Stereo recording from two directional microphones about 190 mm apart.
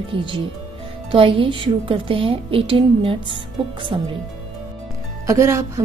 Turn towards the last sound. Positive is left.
turn(degrees=-15)  # may be behind; listen again after turning